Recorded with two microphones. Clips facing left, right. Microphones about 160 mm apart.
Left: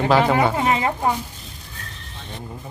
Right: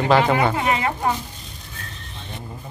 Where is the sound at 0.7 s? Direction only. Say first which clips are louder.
Left 1 dB; 30° left (ahead or behind).